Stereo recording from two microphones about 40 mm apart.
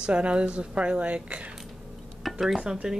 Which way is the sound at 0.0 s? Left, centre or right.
Right.